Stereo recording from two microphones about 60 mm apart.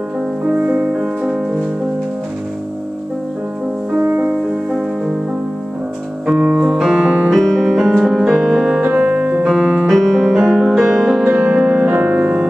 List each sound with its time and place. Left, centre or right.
0.5 s music: centre
6.2 s music: centre
7.2 s music: centre
8.8 s piano: centre
9.8 s music: centre; by 12.4 s right